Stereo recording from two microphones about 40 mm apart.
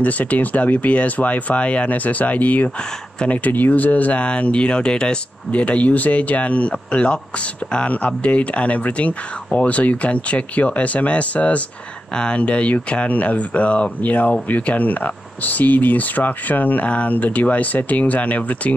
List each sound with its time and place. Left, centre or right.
0.0 s speech: left
4.2 s speech: left
5.5 s speech: left
14.0 s speech: left